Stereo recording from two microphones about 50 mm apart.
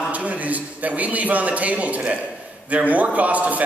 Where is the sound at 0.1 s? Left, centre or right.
Right.